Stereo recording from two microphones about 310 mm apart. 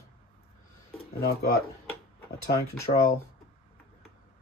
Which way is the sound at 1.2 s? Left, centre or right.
Left.